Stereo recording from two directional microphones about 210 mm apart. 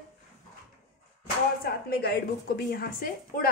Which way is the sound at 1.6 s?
45° left (ahead or behind).